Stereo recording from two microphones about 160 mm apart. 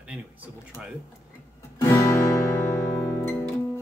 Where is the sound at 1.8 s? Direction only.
20° left (ahead or behind).